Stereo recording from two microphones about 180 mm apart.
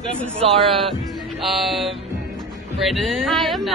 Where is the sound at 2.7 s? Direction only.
Centre (ahead or behind).